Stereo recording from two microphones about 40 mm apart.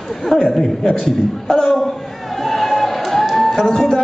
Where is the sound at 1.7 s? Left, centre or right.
Centre.